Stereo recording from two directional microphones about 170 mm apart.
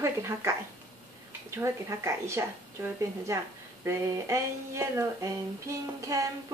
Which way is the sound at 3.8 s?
15° right (ahead or behind).